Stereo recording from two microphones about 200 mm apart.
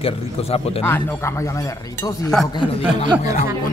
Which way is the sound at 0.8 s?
10° left (ahead or behind).